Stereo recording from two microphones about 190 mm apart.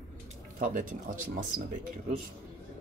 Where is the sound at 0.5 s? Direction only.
45° right (ahead or behind).